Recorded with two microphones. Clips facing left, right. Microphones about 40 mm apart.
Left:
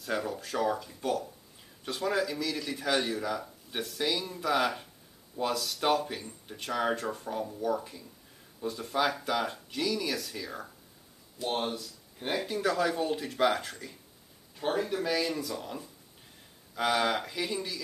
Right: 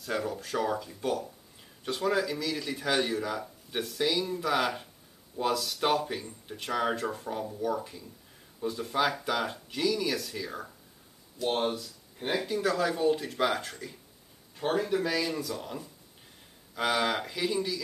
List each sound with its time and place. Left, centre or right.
0.0 s speech: centre
11.4 s speech: centre
12.6 s speech: centre
15.0 s speech: centre